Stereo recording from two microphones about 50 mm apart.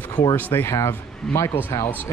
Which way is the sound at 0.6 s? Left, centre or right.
Left.